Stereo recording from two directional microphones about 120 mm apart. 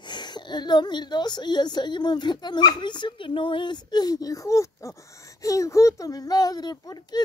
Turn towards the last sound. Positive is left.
turn(degrees=35)  # may be behind; listen again after turning